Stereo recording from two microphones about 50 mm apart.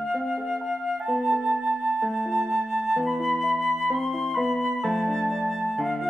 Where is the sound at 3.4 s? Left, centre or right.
Centre.